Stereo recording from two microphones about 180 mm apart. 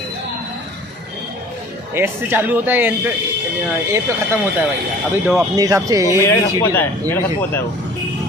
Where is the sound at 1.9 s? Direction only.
10° right (ahead or behind).